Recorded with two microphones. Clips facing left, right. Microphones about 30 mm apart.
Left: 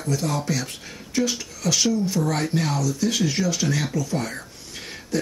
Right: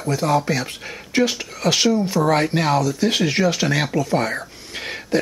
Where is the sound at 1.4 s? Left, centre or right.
Right.